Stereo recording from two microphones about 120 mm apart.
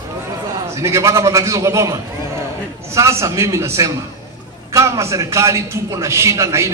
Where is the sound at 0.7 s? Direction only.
25° right (ahead or behind).